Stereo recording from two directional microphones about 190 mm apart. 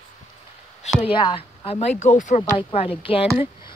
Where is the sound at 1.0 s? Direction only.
25° left (ahead or behind).